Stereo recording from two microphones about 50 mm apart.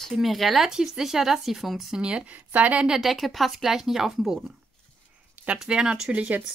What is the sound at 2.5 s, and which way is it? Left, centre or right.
Speech, right.